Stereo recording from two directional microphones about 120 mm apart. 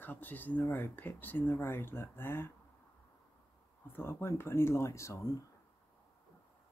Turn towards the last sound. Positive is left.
turn(degrees=25)  # may be behind; listen again after turning